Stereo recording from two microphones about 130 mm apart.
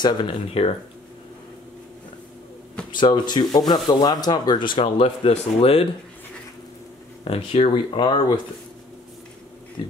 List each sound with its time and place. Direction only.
0.0 s speech: 40° left (ahead or behind)
2.9 s speech: 35° left (ahead or behind)
7.2 s speech: 45° left (ahead or behind)